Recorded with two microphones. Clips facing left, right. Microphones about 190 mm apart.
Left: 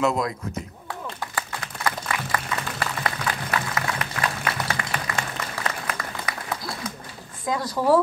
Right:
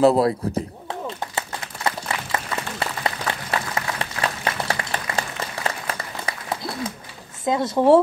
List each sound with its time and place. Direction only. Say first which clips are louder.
0.0 s a sound: right 7 dB; 35° right (ahead or behind)
1.9 s applause: right 1 dB; 25° right (ahead or behind)
7.4 s speech: right 5 dB; 25° right (ahead or behind)